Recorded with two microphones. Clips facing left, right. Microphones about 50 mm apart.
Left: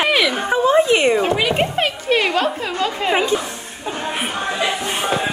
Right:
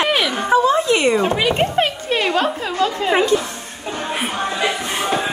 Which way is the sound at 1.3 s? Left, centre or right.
Centre.